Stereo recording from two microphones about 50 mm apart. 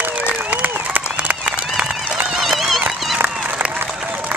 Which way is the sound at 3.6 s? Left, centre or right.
Right.